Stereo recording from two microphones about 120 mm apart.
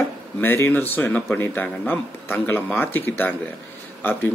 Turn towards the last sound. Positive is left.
turn(degrees=15)  # may be behind; listen again after turning